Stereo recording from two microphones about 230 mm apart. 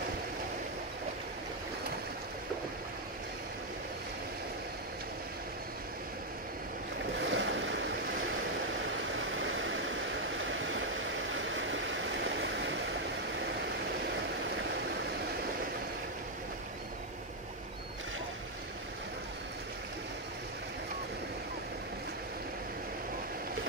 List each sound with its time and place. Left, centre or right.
7.2 s boat: right
9.4 s vehicle: right